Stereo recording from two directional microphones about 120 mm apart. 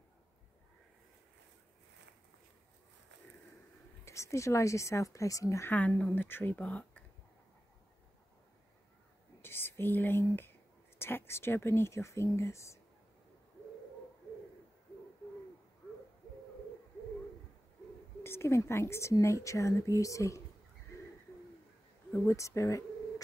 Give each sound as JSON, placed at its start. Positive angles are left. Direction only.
{"t": 4.0, "sound": "speech", "side_deg": 25}
{"t": 5.7, "sound": "speech", "side_deg": 10}
{"t": 9.4, "sound": "speech", "side_deg": 20}
{"t": 18.2, "sound": "speech", "side_deg": 20}
{"t": 22.1, "sound": "speech", "side_deg": 25}